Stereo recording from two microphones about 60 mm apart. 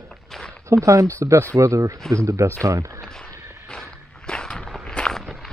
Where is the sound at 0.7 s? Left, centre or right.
Right.